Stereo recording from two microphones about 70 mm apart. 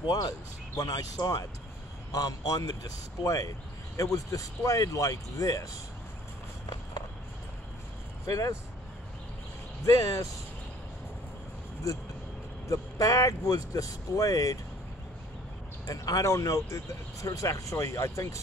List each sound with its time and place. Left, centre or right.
0.0 s speech: left
2.1 s speech: left
8.3 s speech: left
9.8 s speech: left
11.9 s speech: left
15.9 s speech: left